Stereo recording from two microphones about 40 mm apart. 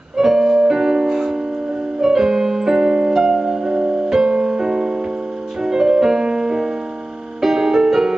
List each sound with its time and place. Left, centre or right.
0.2 s music: centre
2.0 s keyboard: centre
3.1 s music: centre